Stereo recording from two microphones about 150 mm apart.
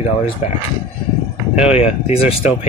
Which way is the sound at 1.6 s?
45° left (ahead or behind).